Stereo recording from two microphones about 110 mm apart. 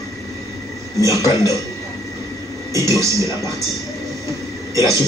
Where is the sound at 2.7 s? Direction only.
30° right (ahead or behind).